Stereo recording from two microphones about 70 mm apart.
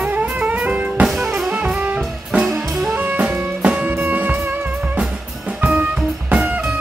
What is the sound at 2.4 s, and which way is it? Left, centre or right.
Music, centre.